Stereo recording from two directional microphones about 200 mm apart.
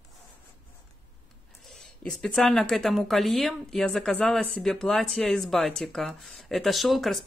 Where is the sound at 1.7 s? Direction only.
Centre (ahead or behind).